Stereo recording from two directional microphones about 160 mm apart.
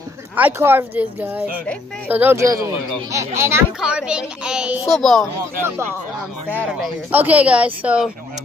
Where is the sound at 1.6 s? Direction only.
10° left (ahead or behind).